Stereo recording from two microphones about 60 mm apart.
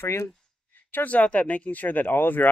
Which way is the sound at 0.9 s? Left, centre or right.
Left.